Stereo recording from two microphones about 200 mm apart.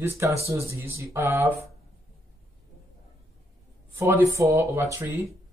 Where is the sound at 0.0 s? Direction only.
10° right (ahead or behind).